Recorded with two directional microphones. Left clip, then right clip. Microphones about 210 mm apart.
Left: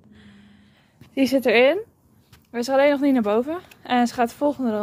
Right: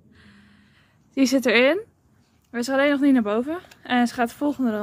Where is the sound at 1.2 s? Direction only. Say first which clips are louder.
Left 1 dB; 20° right (ahead or behind).